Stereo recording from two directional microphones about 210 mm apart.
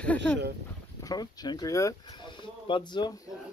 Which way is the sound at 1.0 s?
20° left (ahead or behind).